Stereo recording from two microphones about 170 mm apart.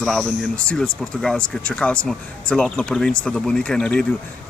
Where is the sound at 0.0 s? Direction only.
5° left (ahead or behind).